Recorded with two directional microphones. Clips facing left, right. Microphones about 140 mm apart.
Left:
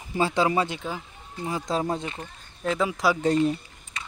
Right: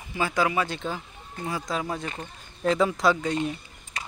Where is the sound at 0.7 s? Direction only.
10° left (ahead or behind).